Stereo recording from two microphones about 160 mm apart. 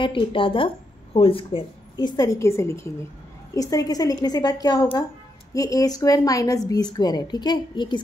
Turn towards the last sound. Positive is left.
turn(degrees=30)  # may be behind; listen again after turning